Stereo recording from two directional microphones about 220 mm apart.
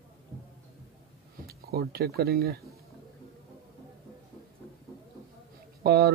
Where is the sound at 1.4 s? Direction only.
45° right (ahead or behind).